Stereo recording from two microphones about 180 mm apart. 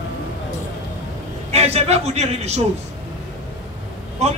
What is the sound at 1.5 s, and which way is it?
Speech, 35° right (ahead or behind).